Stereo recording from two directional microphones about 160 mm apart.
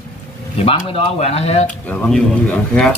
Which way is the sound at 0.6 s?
35° left (ahead or behind).